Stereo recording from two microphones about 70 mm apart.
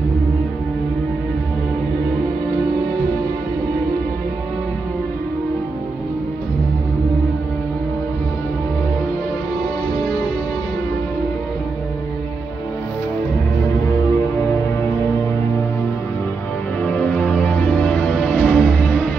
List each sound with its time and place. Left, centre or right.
16.8 s music: centre
18.3 s music: centre